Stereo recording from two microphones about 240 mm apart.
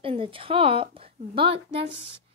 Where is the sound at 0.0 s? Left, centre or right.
Right.